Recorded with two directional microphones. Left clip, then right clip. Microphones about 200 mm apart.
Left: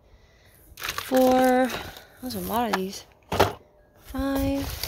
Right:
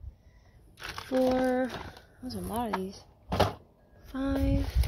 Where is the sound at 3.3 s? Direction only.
45° left (ahead or behind).